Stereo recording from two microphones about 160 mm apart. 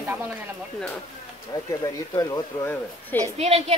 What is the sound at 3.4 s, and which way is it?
Speech, 40° right (ahead or behind).